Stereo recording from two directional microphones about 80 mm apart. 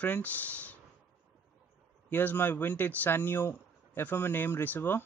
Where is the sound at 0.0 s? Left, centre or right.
Centre.